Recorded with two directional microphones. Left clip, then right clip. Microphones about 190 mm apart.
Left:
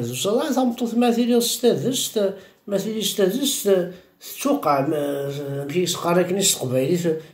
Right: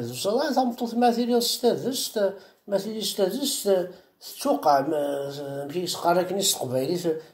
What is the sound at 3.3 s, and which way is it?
Speech, 75° left (ahead or behind).